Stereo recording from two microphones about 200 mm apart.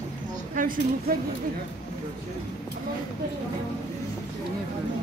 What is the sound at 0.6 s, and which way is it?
Speech, 45° right (ahead or behind).